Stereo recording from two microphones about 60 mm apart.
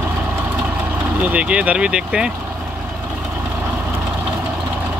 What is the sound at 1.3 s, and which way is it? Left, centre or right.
Speech, centre.